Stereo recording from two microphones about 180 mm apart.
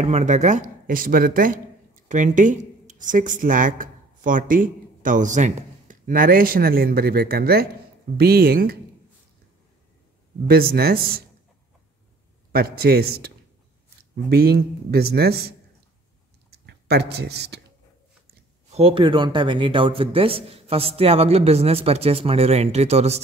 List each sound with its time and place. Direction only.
0.0 s speech: 40° right (ahead or behind); by 8.7 s 55° right (ahead or behind)
10.4 s speech: 55° right (ahead or behind)
12.5 s speech: 60° right (ahead or behind)
16.4 s a sound: 65° right (ahead or behind)
18.7 s speech: 30° right (ahead or behind)